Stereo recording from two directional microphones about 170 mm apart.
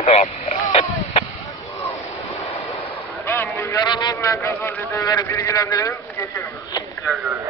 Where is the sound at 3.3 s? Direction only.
15° left (ahead or behind).